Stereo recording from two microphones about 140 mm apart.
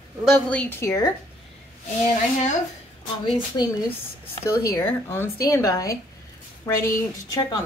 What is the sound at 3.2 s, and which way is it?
A woman's voice, 30° left (ahead or behind).